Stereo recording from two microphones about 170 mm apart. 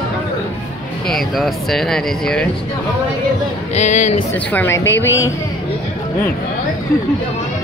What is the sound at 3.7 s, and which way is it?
Speech, 45° left (ahead or behind).